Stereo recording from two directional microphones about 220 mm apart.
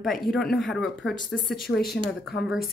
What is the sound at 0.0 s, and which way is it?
Speech, centre (ahead or behind).